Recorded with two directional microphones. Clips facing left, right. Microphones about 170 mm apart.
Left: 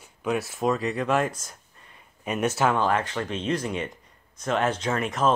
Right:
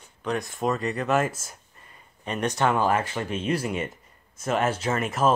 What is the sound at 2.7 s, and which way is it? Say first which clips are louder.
Speech: right 1 dB; 10° right (ahead or behind).